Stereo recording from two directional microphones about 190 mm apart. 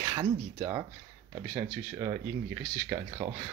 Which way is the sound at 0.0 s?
20° right (ahead or behind).